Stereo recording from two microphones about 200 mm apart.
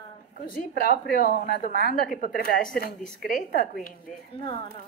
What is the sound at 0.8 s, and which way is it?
A woman's voice, 45° left (ahead or behind).